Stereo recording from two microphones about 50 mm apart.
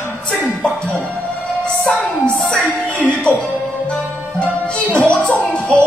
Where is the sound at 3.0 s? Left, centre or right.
Left.